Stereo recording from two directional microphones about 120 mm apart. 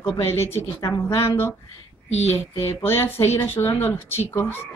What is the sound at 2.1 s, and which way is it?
Speech, 60° left (ahead or behind).